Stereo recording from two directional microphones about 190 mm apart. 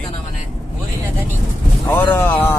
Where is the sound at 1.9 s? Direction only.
10° left (ahead or behind).